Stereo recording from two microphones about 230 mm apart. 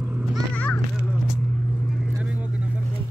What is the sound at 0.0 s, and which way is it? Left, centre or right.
Children playing, centre.